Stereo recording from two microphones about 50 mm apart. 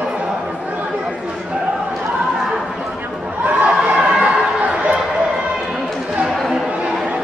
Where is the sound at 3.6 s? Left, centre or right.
Right.